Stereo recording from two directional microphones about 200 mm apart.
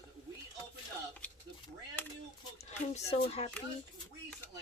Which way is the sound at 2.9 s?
30° left (ahead or behind).